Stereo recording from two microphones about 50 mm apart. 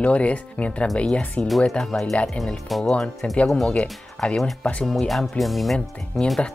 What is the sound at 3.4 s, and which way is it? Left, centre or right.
Speech, centre.